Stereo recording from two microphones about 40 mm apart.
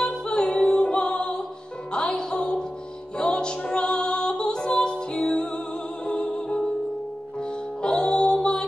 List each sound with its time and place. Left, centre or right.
0.0 s music: left
7.8 s music: left